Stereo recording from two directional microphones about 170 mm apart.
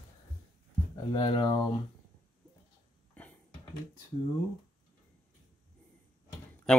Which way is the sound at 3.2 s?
10° left (ahead or behind).